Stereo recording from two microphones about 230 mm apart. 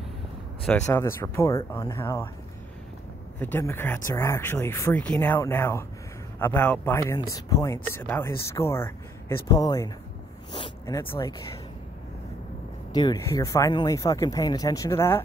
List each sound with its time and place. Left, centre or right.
0.7 s speech: centre
3.3 s speech: centre
12.9 s speech: centre